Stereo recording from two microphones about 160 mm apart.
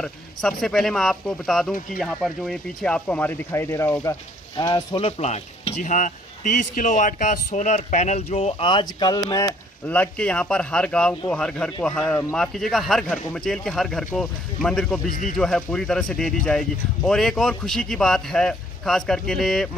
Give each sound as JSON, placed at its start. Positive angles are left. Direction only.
{"t": 0.0, "sound": "speech", "side_deg": 5}
{"t": 4.9, "sound": "speech", "side_deg": 40}
{"t": 9.8, "sound": "speech", "side_deg": 10}
{"t": 15.0, "sound": "speech", "side_deg": 60}
{"t": 15.3, "sound": "speech", "side_deg": 5}